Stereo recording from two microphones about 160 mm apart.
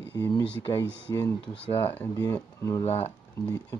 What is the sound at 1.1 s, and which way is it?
Speech, 20° left (ahead or behind).